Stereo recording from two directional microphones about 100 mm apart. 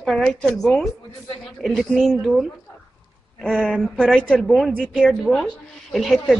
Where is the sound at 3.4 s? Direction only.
5° left (ahead or behind).